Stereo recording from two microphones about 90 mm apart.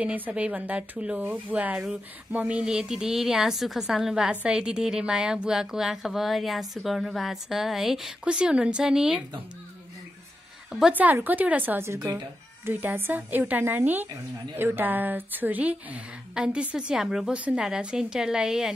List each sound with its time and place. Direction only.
0.0 s a woman's voice: 15° right (ahead or behind)
10.9 s speech: 20° right (ahead or behind)
11.9 s speech: 35° right (ahead or behind)
12.6 s a woman's voice: 25° right (ahead or behind); by 18.7 s 5° right (ahead or behind)